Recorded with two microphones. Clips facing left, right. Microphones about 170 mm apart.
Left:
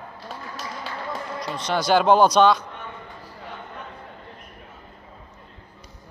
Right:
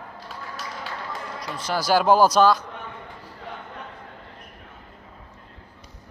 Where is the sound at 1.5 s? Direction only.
5° right (ahead or behind).